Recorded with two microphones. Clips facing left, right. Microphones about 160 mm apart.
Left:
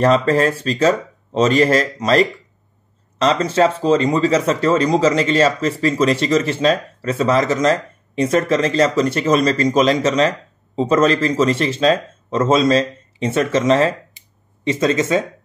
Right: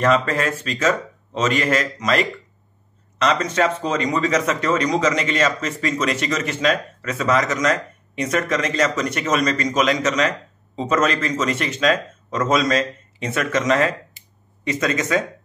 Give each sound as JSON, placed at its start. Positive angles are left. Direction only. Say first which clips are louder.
{"t": 0.0, "sound": "speech", "louder": "left 5 dB", "side_deg": 35}